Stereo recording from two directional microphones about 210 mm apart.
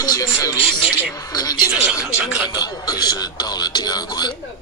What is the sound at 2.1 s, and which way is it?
Speech, 5° right (ahead or behind).